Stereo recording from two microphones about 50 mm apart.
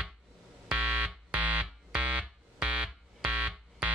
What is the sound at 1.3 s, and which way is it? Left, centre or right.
Music, right.